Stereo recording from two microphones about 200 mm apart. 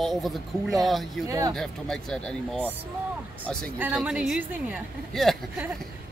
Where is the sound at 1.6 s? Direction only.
Centre (ahead or behind).